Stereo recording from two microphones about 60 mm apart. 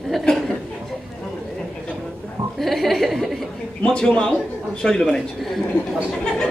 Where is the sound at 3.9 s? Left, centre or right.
Centre.